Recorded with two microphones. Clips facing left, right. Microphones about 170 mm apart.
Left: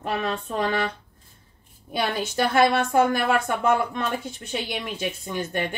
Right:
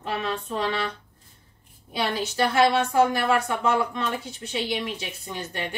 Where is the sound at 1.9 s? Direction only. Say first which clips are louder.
Left 1 dB; 55° left (ahead or behind).